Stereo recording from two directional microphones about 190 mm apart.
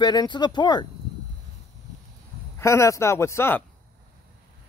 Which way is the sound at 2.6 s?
15° left (ahead or behind).